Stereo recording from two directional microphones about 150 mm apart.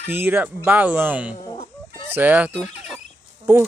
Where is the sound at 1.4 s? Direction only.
35° left (ahead or behind).